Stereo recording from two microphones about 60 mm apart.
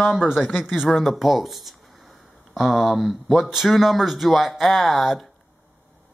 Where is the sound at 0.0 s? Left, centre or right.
Centre.